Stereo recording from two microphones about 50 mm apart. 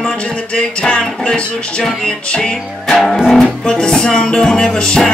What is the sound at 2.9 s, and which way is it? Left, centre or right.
Music, centre.